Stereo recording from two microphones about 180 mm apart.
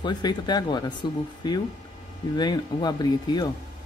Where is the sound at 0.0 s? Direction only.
25° left (ahead or behind).